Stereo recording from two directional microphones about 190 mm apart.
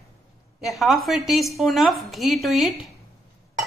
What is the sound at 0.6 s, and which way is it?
A woman's voice, centre (ahead or behind).